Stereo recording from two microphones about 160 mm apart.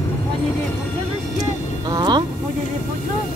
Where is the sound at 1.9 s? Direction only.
25° right (ahead or behind).